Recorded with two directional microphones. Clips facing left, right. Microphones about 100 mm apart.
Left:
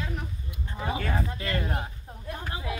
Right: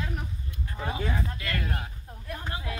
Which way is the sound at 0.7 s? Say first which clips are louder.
Left 2 dB; 20° left (ahead or behind).